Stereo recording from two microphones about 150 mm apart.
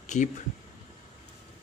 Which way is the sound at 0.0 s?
55° left (ahead or behind).